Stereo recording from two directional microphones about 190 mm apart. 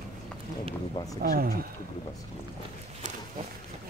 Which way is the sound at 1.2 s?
50° right (ahead or behind).